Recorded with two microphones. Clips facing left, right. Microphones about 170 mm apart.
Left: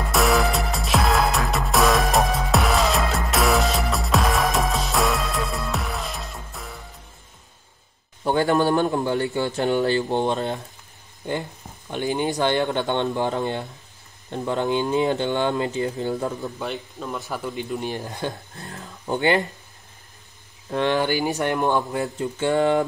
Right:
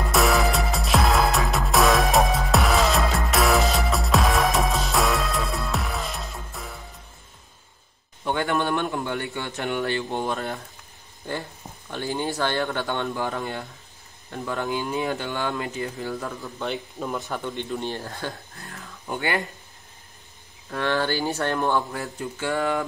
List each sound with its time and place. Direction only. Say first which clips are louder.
0.1 s music: left 1 dB; centre (ahead or behind)
8.2 s a man's voice: left 5 dB; 35° left (ahead or behind)
16.5 s speech: even; centre (ahead or behind); by 18.3 s 15° left (ahead or behind)
18.6 s speech: left 3 dB; 35° left (ahead or behind)
20.7 s speech: left 3 dB; 20° left (ahead or behind)